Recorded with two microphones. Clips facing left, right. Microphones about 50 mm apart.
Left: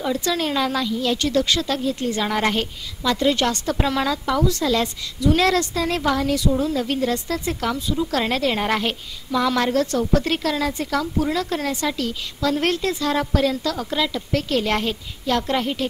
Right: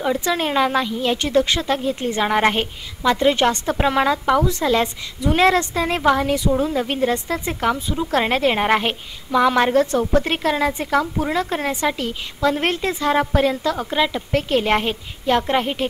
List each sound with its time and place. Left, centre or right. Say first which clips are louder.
0.0 s a woman's voice: right 2 dB; right